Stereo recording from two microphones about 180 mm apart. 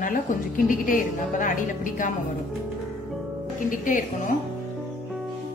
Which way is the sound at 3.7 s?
45° left (ahead or behind).